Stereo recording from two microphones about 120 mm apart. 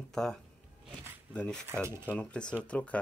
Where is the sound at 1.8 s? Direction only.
20° right (ahead or behind).